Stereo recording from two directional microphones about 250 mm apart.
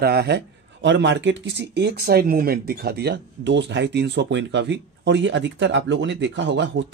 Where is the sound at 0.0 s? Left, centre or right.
Right.